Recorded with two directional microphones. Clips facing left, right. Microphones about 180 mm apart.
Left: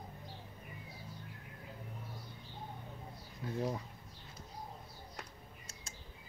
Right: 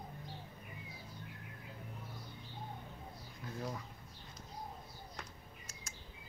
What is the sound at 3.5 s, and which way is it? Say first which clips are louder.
Speech: left 6 dB; 30° left (ahead or behind).